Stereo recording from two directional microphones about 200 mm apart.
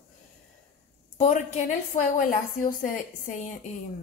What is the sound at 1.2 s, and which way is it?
A woman's voice, 40° left (ahead or behind).